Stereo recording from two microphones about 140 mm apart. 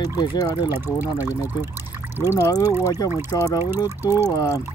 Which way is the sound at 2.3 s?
25° left (ahead or behind).